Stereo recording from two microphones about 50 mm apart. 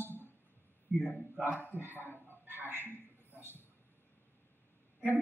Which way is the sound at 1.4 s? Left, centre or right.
Right.